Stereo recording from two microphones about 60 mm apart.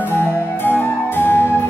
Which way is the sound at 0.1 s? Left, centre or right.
Left.